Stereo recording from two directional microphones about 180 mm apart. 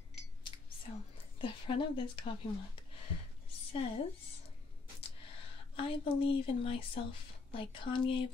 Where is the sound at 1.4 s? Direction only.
30° left (ahead or behind).